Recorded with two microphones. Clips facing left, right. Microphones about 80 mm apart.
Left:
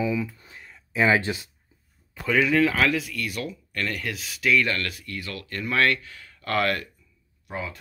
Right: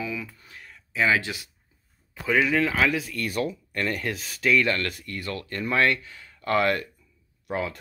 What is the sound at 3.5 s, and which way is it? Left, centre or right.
Speech, right.